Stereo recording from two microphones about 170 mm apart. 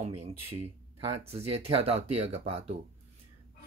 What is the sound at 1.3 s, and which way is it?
Speech, 35° right (ahead or behind).